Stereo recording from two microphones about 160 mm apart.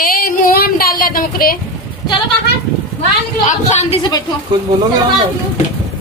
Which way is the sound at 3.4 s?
45° left (ahead or behind).